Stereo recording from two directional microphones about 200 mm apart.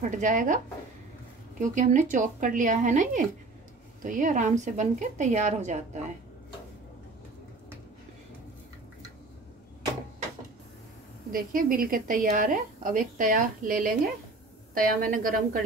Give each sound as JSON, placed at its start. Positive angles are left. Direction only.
{"t": 0.1, "sound": "a woman's voice", "side_deg": -40}
{"t": 1.6, "sound": "a woman's voice", "side_deg": -40}
{"t": 11.3, "sound": "a woman's voice", "side_deg": -45}